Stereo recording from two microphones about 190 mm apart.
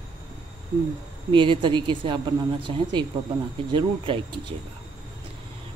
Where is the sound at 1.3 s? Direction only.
25° right (ahead or behind).